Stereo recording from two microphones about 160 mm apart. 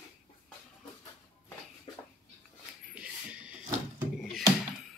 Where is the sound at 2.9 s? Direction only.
5° right (ahead or behind).